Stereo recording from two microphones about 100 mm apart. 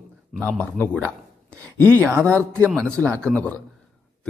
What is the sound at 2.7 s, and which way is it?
Speech, 5° left (ahead or behind).